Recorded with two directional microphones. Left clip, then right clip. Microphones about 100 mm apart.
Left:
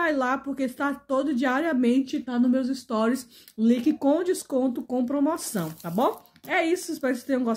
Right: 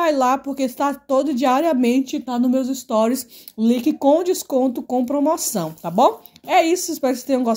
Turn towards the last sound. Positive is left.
turn(degrees=-20)  # may be behind; listen again after turning